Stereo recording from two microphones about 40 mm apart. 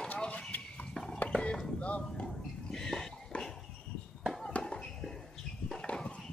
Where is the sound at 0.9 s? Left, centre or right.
Centre.